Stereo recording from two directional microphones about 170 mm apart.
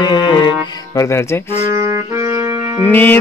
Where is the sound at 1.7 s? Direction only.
20° right (ahead or behind).